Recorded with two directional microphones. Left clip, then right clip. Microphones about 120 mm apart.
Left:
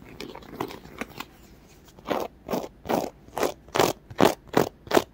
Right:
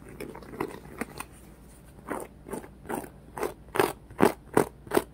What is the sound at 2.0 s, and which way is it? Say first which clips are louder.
Crunch: left 8 dB; 40° left (ahead or behind).